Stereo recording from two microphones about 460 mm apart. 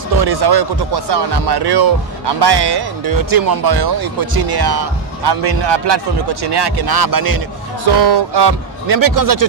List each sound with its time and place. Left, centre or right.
0.2 s speech: right
7.8 s speech: right